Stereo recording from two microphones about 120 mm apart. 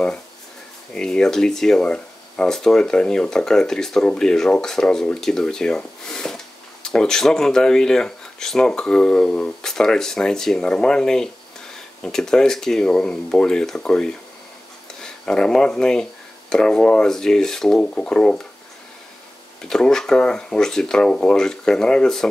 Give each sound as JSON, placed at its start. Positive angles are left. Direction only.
{"t": 0.9, "sound": "speech", "side_deg": 5}
{"t": 19.6, "sound": "speech", "side_deg": 5}